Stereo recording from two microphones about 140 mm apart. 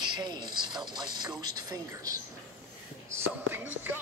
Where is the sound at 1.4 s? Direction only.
30° right (ahead or behind).